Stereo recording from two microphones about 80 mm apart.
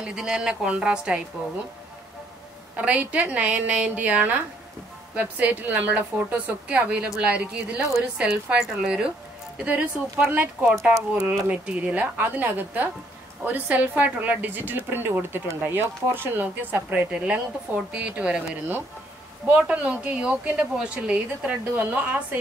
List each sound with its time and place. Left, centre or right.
0.0 s a woman's voice: centre
2.7 s a woman's voice: centre
16.9 s a woman's voice: centre